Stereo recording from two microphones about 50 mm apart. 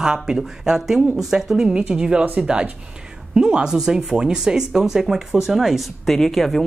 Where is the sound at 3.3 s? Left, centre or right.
Centre.